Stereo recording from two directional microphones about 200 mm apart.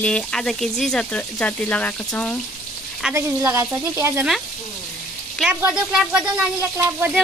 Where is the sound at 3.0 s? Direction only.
10° right (ahead or behind).